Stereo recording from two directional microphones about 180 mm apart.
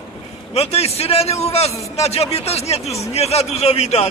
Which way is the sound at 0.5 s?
35° left (ahead or behind).